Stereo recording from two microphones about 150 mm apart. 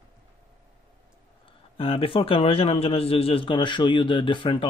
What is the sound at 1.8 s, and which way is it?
A man's voice, 40° left (ahead or behind).